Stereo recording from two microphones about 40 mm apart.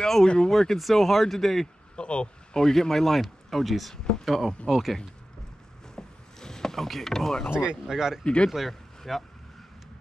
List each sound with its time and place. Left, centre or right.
0.0 s a sound: centre
0.5 s speech: centre
2.0 s a sound: left
2.6 s speech: centre
3.9 s speech: centre
4.3 s speech: centre
5.9 s mechanisms: centre
7.9 s speech: centre
8.2 s speech: left
8.5 s speech: centre